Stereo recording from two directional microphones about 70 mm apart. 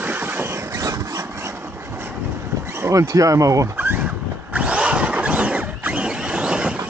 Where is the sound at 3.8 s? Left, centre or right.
Right.